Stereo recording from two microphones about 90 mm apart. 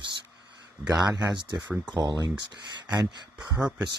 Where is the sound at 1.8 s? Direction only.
50° right (ahead or behind).